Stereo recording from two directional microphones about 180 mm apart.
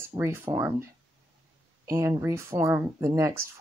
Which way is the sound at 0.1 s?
20° right (ahead or behind).